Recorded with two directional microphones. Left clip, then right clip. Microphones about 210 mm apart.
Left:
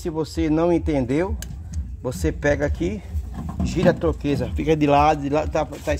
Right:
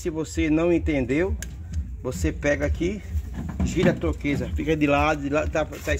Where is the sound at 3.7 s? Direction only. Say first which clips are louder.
Left 4 dB; 60° left (ahead or behind).